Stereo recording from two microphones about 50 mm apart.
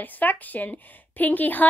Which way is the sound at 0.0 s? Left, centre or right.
Left.